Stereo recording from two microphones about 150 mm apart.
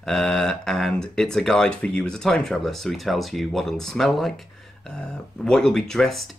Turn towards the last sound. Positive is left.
turn(degrees=0)  # may be behind; listen again after turning